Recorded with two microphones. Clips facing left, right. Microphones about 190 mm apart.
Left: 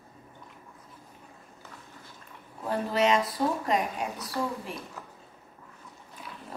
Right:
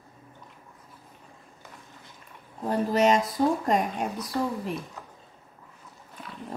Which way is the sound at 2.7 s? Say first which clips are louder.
Right 3 dB; 45° right (ahead or behind).